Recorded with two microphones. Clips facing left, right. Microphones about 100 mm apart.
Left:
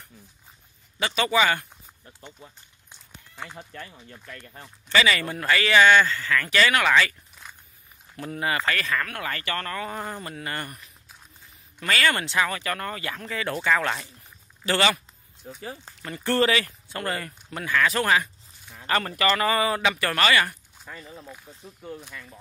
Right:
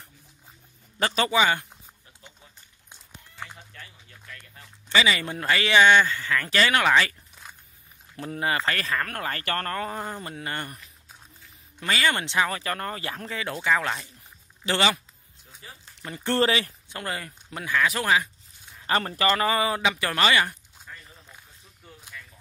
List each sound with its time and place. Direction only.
0.9 s speech: 40° right (ahead or behind)
1.3 s a man's voice: 20° right (ahead or behind)
3.5 s speech: 45° left (ahead or behind)
4.8 s a man's voice: 15° right (ahead or behind)
8.2 s speech: 30° right (ahead or behind); by 9.8 s 45° right (ahead or behind)
9.8 s a man's voice: 25° right (ahead or behind)
11.8 s a man's voice: 20° right (ahead or behind)
13.4 s speech: 15° right (ahead or behind)
13.7 s speech: 5° right (ahead or behind)
14.6 s speech: 20° right (ahead or behind)
16.3 s a man's voice: 25° right (ahead or behind)
16.9 s speech: 15° right (ahead or behind)
18.9 s a man's voice: 25° right (ahead or behind)
20.9 s speech: 85° left; by 22.2 s 65° left (ahead or behind)